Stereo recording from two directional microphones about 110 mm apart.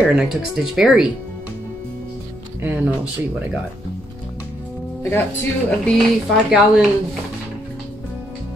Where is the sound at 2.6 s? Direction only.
15° right (ahead or behind).